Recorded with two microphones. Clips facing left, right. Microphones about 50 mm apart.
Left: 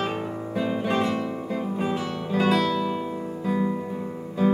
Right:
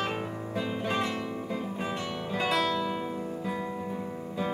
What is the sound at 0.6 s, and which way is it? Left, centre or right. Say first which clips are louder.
Music: left 6 dB; centre.